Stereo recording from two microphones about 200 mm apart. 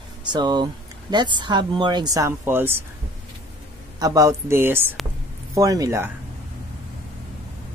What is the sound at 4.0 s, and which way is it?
Speech, 15° right (ahead or behind).